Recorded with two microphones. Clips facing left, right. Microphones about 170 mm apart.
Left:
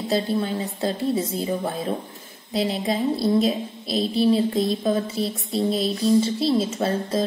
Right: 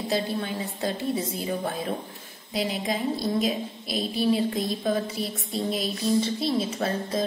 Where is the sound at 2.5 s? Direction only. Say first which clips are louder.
Left 4 dB; 30° left (ahead or behind).